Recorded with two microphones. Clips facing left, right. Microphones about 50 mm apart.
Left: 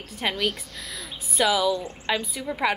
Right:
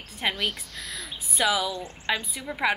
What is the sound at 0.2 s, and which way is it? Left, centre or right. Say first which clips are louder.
A woman's voice: left 2 dB; centre.